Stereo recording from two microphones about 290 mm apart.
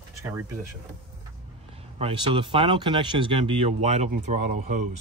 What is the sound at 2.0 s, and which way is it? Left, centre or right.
Speech, centre.